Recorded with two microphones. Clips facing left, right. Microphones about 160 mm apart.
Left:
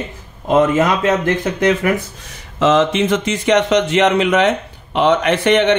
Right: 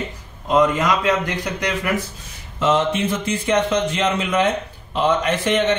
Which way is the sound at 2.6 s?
90° left.